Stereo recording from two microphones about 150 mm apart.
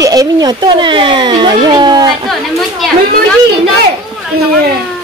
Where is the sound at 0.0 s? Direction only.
25° right (ahead or behind).